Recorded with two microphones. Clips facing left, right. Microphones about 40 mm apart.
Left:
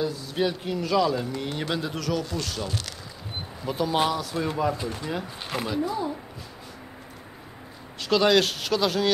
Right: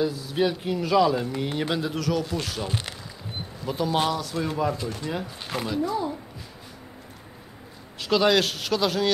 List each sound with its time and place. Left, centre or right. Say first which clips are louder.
0.0 s speech: right 2 dB; centre
2.3 s speech: right 1 dB; centre
3.6 s speech: even; centre
8.0 s speech: even; centre